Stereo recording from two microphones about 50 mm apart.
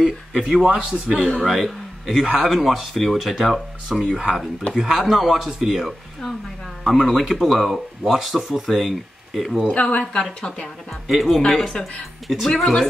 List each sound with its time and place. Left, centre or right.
0.4 s a man's voice: centre
1.1 s speech: left
1.4 s a man's voice: centre
4.7 s speech: centre
9.7 s speech: left
11.1 s speech: centre